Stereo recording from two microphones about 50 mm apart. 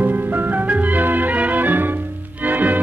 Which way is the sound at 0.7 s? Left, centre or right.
Right.